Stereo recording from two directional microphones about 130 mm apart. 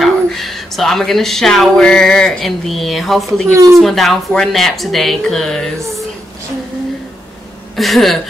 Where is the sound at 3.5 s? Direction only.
20° right (ahead or behind).